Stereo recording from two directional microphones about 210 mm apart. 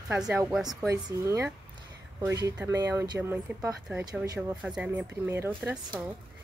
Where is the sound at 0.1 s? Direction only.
5° right (ahead or behind).